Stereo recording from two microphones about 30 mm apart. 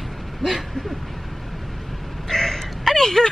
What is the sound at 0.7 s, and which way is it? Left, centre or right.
Speech, centre.